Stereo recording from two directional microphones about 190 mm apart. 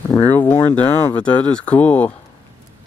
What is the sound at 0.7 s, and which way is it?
Speech, 10° left (ahead or behind).